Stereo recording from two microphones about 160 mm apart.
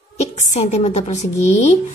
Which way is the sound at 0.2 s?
45° left (ahead or behind).